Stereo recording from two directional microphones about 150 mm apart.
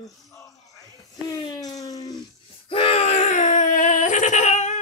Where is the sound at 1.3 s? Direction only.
30° left (ahead or behind).